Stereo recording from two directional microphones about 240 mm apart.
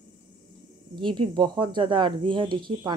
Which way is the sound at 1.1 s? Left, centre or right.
Centre.